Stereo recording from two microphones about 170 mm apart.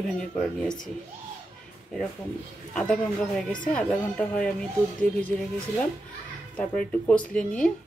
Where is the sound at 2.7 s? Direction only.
5° left (ahead or behind).